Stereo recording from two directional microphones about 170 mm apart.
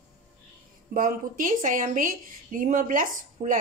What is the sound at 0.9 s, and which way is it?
A woman's voice, 55° right (ahead or behind).